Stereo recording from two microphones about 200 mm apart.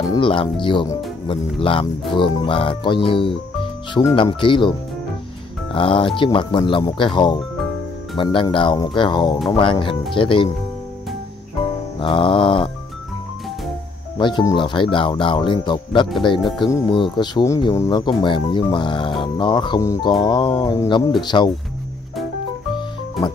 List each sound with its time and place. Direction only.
0.1 s speech: 25° left (ahead or behind)
12.0 s speech: 25° left (ahead or behind)
14.1 s speech: 20° left (ahead or behind)